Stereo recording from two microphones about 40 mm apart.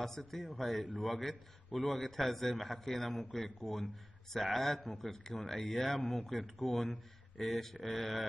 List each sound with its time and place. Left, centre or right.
0.2 s speech: centre
0.5 s a man's voice: centre